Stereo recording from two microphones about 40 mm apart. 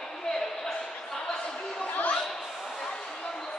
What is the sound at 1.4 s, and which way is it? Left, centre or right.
Chatter, centre.